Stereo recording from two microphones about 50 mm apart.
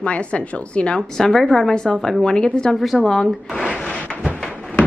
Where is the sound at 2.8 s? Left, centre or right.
Centre.